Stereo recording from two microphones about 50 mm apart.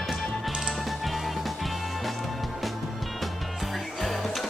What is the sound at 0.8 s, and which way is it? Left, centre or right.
Music, centre.